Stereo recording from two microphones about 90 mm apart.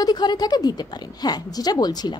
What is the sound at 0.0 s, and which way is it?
A woman's voice, 50° left (ahead or behind).